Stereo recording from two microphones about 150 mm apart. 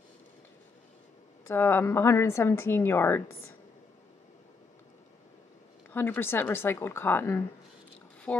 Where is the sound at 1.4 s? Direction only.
15° left (ahead or behind).